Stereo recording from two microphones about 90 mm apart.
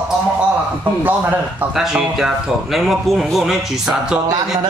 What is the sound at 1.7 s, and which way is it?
A man's voice, 5° right (ahead or behind).